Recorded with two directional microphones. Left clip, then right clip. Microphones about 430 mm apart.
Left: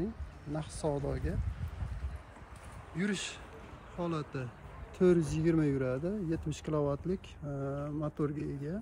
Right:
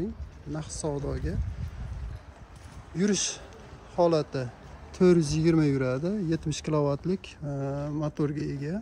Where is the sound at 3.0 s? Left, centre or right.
Centre.